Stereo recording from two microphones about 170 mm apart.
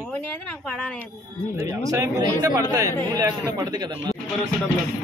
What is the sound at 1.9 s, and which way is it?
A man's voice, 20° right (ahead or behind).